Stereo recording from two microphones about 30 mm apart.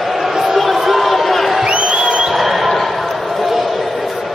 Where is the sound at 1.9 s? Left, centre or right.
Right.